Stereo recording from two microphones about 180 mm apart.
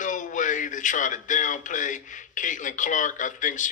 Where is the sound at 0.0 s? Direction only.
45° left (ahead or behind).